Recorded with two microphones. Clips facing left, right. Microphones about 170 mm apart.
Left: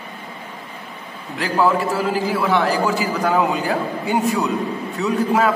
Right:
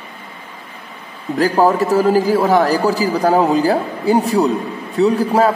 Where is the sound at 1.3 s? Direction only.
40° right (ahead or behind).